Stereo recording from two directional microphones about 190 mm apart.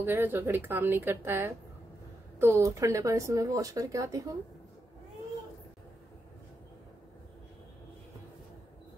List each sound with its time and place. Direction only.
0.0 s speech: 10° right (ahead or behind)